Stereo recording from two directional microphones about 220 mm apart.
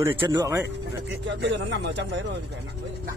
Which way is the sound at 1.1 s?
55° right (ahead or behind).